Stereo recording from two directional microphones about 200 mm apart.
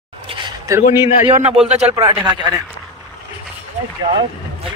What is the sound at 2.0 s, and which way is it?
Speech, 20° right (ahead or behind).